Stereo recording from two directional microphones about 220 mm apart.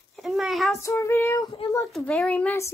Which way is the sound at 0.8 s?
15° left (ahead or behind).